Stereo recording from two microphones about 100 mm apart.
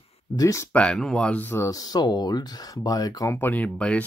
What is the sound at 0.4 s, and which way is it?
Speech, 30° left (ahead or behind).